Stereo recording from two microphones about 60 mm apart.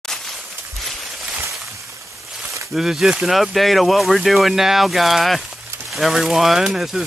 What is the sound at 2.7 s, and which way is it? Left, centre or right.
Speech, centre.